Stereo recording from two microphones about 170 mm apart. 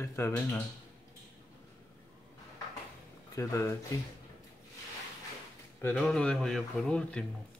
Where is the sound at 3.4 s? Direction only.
15° left (ahead or behind).